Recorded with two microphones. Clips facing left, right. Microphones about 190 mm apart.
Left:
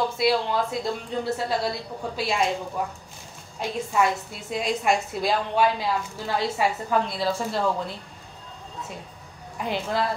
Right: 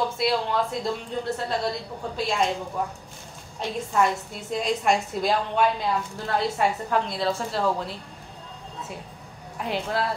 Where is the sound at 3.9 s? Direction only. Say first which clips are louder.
Right 1 dB; 5° left (ahead or behind).